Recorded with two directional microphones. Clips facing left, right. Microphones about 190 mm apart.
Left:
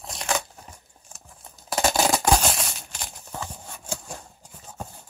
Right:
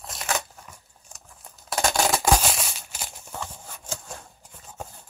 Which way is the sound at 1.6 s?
Centre (ahead or behind).